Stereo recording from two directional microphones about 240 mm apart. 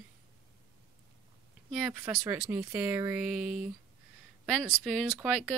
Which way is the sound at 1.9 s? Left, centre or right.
Centre.